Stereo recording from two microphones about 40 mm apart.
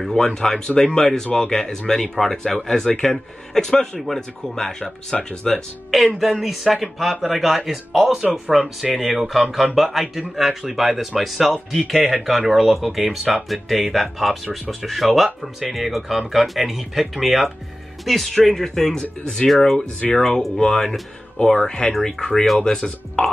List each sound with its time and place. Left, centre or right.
0.2 s speech: centre
6.1 s speech: centre